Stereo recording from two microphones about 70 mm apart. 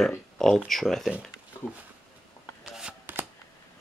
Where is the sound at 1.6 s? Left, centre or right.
Left.